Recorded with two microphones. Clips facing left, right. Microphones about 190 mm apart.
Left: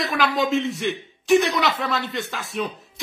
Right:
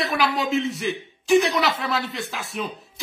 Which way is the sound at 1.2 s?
Centre (ahead or behind).